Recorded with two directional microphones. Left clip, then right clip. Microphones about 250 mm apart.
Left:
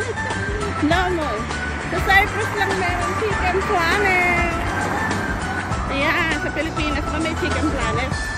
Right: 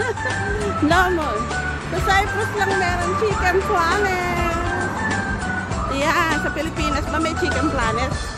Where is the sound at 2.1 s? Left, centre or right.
Centre.